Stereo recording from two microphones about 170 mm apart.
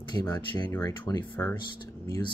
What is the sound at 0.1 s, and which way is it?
Speech, 25° left (ahead or behind).